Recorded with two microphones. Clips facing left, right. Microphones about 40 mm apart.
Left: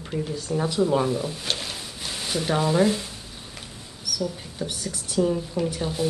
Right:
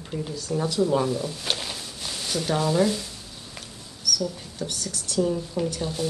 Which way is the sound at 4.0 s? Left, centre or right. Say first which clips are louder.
Right 1 dB; centre.